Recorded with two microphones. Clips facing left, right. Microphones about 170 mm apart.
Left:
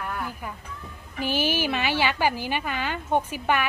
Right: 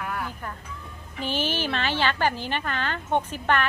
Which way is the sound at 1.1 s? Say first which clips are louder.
Left 2 dB; 10° left (ahead or behind).